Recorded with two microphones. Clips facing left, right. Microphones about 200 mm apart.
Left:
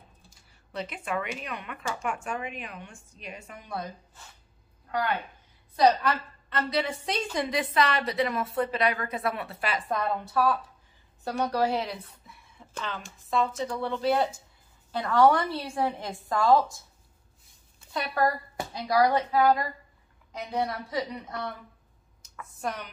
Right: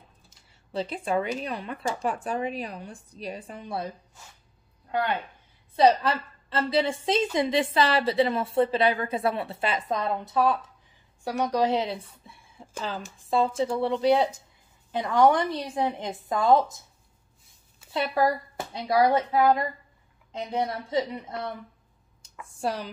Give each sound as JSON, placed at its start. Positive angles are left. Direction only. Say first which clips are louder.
{"t": 0.3, "sound": "speech", "louder": "right 5 dB", "side_deg": -30}
{"t": 4.9, "sound": "a woman's voice", "louder": "right 2 dB", "side_deg": -25}
{"t": 11.2, "sound": "a woman's voice", "louder": "right 2 dB", "side_deg": -10}
{"t": 18.2, "sound": "a woman's voice", "louder": "right 1 dB", "side_deg": -25}
{"t": 22.5, "sound": "speech", "louder": "right 4 dB", "side_deg": -30}